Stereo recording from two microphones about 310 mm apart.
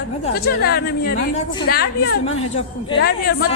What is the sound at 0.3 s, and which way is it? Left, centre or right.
A woman's voice, left.